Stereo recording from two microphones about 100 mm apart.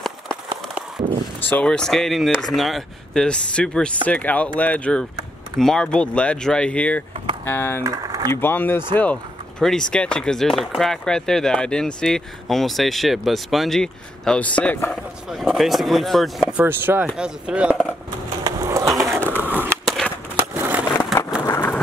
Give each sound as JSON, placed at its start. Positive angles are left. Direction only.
{"t": 1.4, "sound": "speech", "side_deg": 20}
{"t": 1.7, "sound": "speech", "side_deg": 5}
{"t": 7.8, "sound": "speech", "side_deg": -40}
{"t": 8.3, "sound": "speech", "side_deg": 20}
{"t": 15.2, "sound": "speech", "side_deg": -5}
{"t": 16.4, "sound": "speech", "side_deg": -15}
{"t": 17.2, "sound": "speech", "side_deg": -10}
{"t": 18.4, "sound": "a sound", "side_deg": -30}
{"t": 19.0, "sound": "pigeon", "side_deg": -25}
{"t": 19.8, "sound": "a sound", "side_deg": 0}
{"t": 20.3, "sound": "a sound", "side_deg": -20}
{"t": 21.5, "sound": "a sound", "side_deg": 20}